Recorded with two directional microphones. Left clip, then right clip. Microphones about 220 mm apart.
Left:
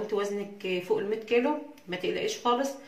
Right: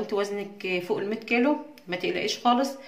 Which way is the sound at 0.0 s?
50° right (ahead or behind).